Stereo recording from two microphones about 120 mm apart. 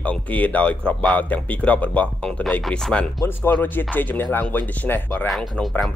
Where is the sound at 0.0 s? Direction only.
10° left (ahead or behind).